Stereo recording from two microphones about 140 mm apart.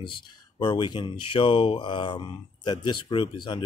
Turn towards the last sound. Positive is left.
turn(degrees=35)  # may be behind; listen again after turning